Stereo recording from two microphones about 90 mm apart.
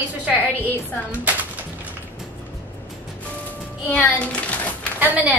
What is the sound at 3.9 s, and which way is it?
Speech, 15° left (ahead or behind).